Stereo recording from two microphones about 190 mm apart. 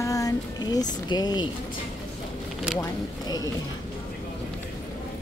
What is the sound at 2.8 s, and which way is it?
Speech, 20° left (ahead or behind).